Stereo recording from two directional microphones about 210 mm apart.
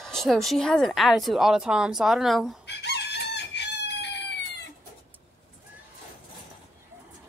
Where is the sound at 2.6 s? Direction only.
55° left (ahead or behind).